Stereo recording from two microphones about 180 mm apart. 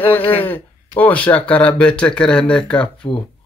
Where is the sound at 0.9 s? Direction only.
10° left (ahead or behind).